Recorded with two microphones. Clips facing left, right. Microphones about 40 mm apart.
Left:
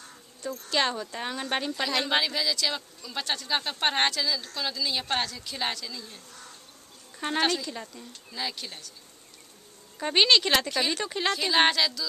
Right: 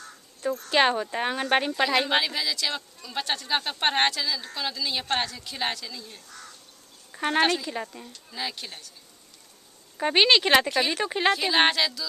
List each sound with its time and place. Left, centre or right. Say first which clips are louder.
0.4 s speech: right 5 dB; right
1.8 s speech: right 3 dB; centre
7.1 s a sound: right 4 dB; right
7.3 s speech: right 3 dB; centre
8.3 s speech: right 1 dB; centre
9.9 s speech: right 2 dB; centre
10.7 s speech: right 3 dB; centre
11.1 s speech: right 5 dB; right
11.3 s speech: right 1 dB; centre